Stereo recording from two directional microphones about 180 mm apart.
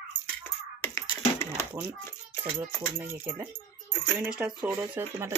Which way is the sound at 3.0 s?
15° right (ahead or behind).